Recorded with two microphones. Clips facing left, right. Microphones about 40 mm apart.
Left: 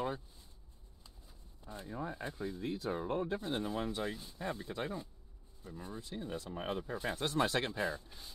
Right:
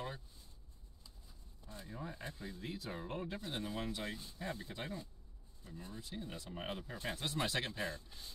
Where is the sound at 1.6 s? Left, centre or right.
Left.